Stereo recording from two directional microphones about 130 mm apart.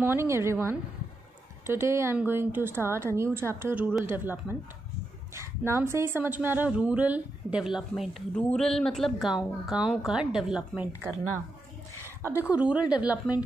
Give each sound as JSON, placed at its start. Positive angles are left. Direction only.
{"t": 0.0, "sound": "speech", "side_deg": -20}
{"t": 12.4, "sound": "speech", "side_deg": -10}